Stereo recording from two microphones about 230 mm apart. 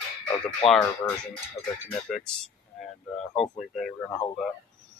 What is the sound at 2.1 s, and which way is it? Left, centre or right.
Speech, centre.